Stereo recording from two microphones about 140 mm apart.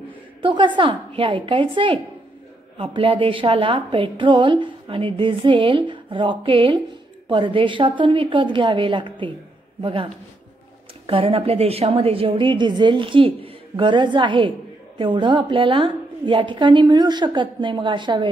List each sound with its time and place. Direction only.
0.4 s a woman's voice: 35° right (ahead or behind)